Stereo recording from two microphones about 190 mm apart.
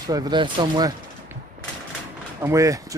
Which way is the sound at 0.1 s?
20° right (ahead or behind).